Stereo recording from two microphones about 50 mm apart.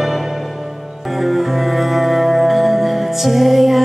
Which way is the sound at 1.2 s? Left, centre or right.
Centre.